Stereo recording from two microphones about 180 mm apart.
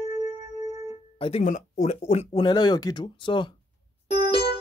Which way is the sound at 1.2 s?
40° left (ahead or behind).